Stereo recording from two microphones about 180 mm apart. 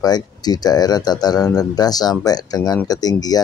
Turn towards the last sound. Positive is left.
turn(degrees=20)  # may be behind; listen again after turning